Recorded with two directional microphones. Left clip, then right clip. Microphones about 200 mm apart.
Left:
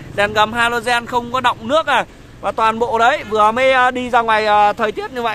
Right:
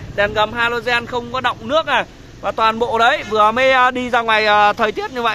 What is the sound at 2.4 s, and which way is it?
A man's voice, 15° left (ahead or behind).